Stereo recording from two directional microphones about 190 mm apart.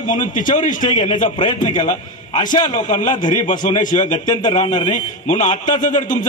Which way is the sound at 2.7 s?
40° left (ahead or behind).